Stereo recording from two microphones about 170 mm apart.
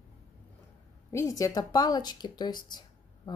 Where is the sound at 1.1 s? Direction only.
15° left (ahead or behind).